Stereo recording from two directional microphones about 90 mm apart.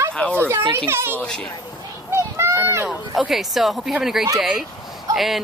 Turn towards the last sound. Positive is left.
turn(degrees=0)  # may be behind; listen again after turning